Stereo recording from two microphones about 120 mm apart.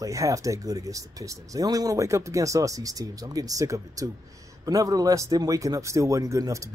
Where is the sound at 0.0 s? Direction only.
30° right (ahead or behind).